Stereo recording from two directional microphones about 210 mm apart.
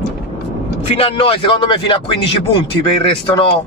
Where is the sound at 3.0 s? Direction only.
25° left (ahead or behind).